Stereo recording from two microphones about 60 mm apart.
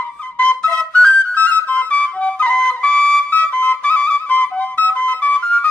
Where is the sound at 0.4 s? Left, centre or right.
Centre.